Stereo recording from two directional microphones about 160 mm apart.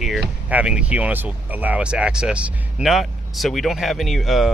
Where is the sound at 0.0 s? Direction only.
5° right (ahead or behind).